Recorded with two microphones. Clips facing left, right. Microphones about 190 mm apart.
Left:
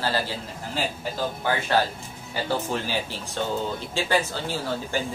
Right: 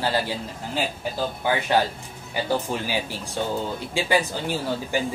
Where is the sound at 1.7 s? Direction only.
15° right (ahead or behind).